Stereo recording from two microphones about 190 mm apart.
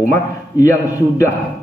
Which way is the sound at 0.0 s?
15° left (ahead or behind).